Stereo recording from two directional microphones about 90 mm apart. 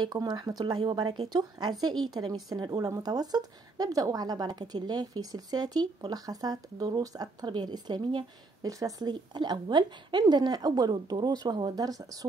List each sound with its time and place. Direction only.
0.0 s a woman's voice: 50° right (ahead or behind)
8.6 s speech: 40° right (ahead or behind)
9.1 s a woman's voice: 55° right (ahead or behind)